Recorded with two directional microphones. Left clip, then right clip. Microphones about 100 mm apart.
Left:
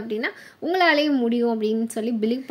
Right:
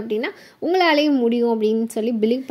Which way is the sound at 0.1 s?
35° right (ahead or behind).